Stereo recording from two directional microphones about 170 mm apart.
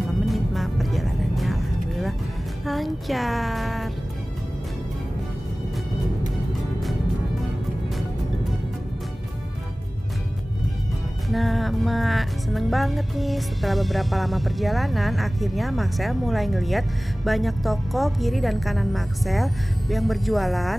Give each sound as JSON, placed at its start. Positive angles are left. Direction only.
{"t": 0.3, "sound": "music", "side_deg": 0}
{"t": 2.6, "sound": "speech", "side_deg": 0}
{"t": 11.2, "sound": "speech", "side_deg": 0}